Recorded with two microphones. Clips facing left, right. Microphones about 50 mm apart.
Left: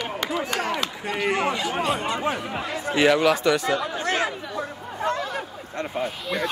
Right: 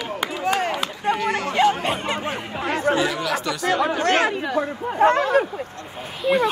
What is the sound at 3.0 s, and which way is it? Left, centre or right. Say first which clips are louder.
Speech: left 5 dB; left.